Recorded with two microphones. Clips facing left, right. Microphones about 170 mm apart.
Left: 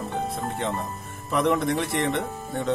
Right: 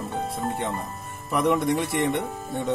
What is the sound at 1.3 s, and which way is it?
Speech, centre (ahead or behind).